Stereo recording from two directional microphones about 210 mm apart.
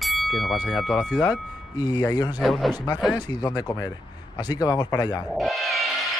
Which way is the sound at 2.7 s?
20° left (ahead or behind).